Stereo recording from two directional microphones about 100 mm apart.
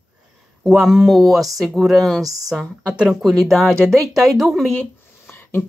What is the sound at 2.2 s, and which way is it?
Speech, 35° right (ahead or behind).